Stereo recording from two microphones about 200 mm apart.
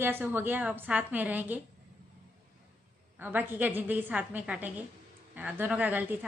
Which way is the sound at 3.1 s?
10° right (ahead or behind).